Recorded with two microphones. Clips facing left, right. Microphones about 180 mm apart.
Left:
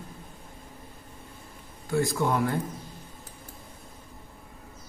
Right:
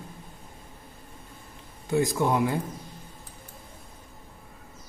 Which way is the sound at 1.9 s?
20° right (ahead or behind).